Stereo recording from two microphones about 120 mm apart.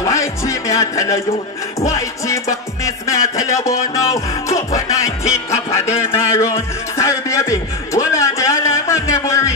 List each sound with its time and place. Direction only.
0.0 s music: 25° left (ahead or behind)